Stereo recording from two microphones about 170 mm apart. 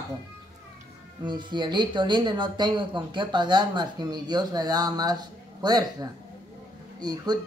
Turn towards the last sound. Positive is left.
turn(degrees=-25)  # may be behind; listen again after turning